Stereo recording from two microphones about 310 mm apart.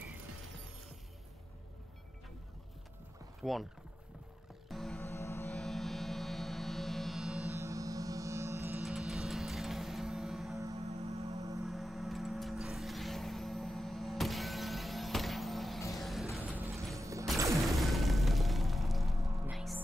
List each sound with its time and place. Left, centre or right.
3.4 s speech: centre
4.6 s music: centre
10.9 s music: centre
11.6 s music: centre